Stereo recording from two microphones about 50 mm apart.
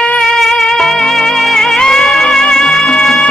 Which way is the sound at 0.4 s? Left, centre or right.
Centre.